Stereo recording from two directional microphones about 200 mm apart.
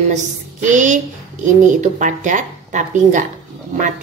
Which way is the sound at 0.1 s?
40° right (ahead or behind).